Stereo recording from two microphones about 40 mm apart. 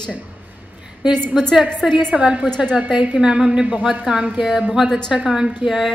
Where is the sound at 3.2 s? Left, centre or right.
Right.